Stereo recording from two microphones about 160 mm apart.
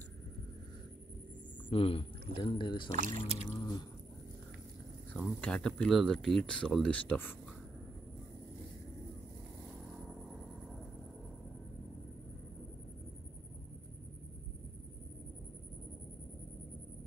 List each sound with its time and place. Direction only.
1.7 s speech: 35° left (ahead or behind)
2.9 s speech: 50° right (ahead or behind)
3.3 s speech: 35° left (ahead or behind)
5.4 s speech: 5° left (ahead or behind)
9.8 s vehicle: 5° right (ahead or behind)